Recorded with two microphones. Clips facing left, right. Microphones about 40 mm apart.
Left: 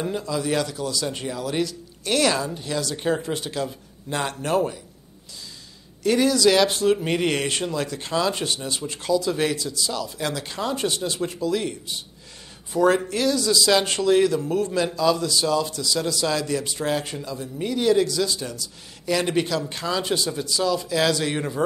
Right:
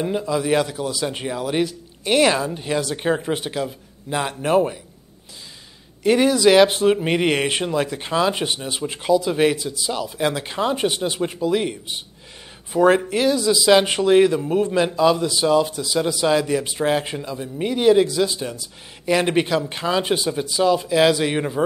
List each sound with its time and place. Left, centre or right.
0.0 s speech: centre
3.6 s a man's voice: centre
6.0 s speech: right